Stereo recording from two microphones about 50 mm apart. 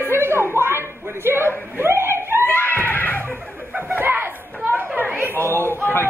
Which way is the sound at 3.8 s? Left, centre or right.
Right.